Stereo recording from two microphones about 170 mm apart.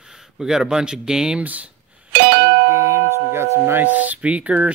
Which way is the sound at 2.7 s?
15° right (ahead or behind).